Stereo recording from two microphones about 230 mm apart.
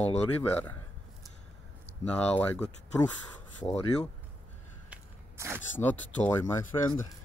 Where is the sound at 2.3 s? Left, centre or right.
Centre.